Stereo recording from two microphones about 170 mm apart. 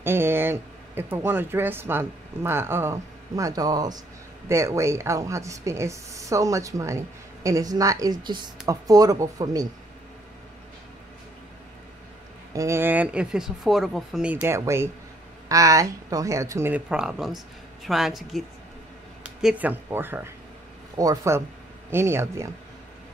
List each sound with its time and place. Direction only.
0.0 s a woman's voice: 15° right (ahead or behind)
12.5 s a woman's voice: 15° right (ahead or behind)